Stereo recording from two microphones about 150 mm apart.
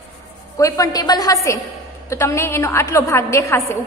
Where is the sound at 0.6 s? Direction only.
25° left (ahead or behind).